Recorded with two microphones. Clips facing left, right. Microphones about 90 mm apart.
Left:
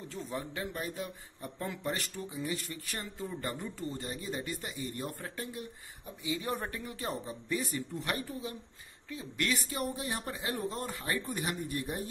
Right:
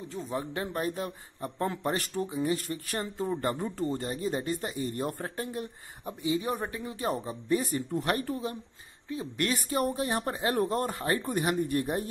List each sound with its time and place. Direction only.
0.2 s a man's voice: 35° right (ahead or behind)
6.2 s speech: 30° right (ahead or behind)
7.1 s speech: 40° right (ahead or behind)
9.1 s a man's voice: 35° right (ahead or behind)
9.8 s speech: 55° right (ahead or behind)